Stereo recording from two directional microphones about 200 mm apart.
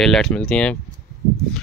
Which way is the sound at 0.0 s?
5° left (ahead or behind).